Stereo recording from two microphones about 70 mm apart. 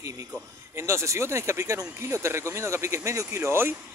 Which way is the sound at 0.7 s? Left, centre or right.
Right.